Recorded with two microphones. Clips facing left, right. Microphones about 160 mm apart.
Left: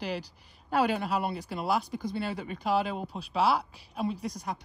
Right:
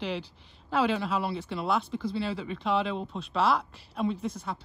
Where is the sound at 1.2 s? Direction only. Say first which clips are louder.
Right 1 dB; 45° left (ahead or behind).